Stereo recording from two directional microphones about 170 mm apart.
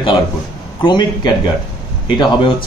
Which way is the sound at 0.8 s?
25° left (ahead or behind).